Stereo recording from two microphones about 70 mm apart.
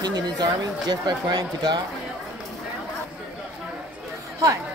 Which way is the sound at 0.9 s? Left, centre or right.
Right.